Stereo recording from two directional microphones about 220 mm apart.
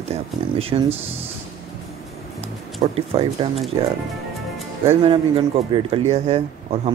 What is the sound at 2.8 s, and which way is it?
Speech, 25° right (ahead or behind).